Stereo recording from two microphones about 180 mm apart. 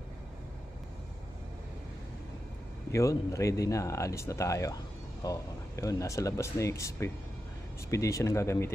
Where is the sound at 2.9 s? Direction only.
20° left (ahead or behind).